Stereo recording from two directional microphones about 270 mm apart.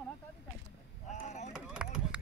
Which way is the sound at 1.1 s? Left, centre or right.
Left.